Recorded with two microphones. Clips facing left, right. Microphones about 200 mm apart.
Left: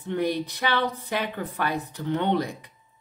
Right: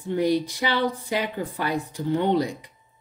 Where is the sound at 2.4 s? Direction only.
55° left (ahead or behind).